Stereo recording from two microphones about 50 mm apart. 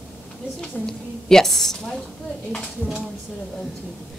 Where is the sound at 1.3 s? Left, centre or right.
Centre.